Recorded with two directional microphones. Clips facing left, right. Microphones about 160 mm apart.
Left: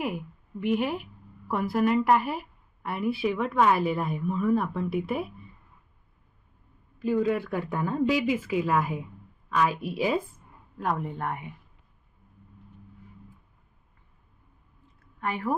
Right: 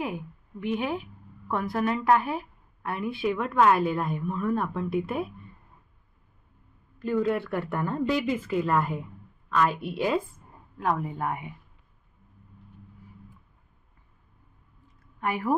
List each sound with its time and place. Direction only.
0.6 s a woman's voice: 5° left (ahead or behind)
7.0 s a woman's voice: 10° left (ahead or behind); by 11.4 s 10° right (ahead or behind)
15.1 s a woman's voice: 10° right (ahead or behind)